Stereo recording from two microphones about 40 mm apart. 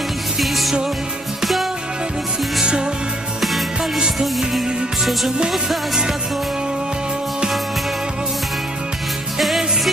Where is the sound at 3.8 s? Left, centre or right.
Centre.